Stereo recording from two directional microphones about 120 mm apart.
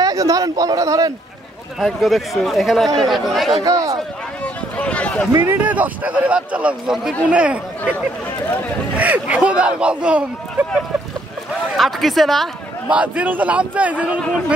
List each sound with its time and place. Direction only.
0.0 s a man's voice: 30° right (ahead or behind)
1.8 s speech: centre (ahead or behind)
3.6 s speech: 30° right (ahead or behind)
4.7 s speech: 10° left (ahead or behind)
5.4 s speech: 15° right (ahead or behind)
8.9 s speech: 10° right (ahead or behind)
11.7 s speech: centre (ahead or behind)
12.9 s speech: 10° right (ahead or behind)